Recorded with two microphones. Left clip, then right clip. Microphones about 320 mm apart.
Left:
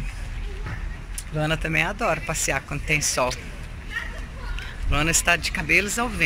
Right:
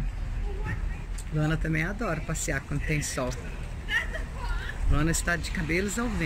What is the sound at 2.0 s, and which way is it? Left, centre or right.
Speech, centre.